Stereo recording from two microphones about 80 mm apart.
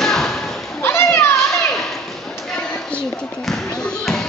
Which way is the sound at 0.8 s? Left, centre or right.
Left.